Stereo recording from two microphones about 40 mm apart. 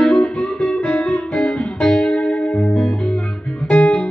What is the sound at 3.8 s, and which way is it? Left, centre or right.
Music, left.